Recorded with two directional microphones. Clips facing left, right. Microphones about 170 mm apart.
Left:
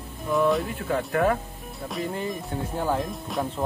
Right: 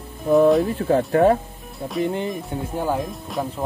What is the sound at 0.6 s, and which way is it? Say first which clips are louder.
Speech: right 8 dB; 35° right (ahead or behind).